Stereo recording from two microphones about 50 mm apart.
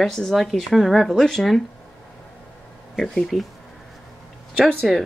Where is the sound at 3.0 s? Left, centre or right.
Centre.